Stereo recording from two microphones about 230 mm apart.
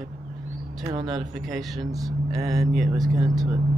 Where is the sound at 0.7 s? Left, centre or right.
Centre.